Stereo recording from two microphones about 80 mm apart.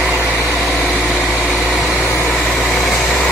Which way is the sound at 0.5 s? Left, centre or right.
Centre.